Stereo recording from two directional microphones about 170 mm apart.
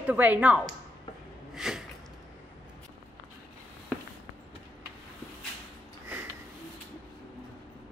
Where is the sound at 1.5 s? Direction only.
5° right (ahead or behind).